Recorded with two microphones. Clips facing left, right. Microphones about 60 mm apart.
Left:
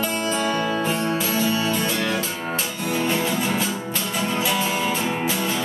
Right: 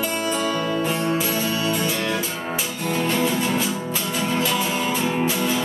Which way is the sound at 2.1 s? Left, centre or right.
Centre.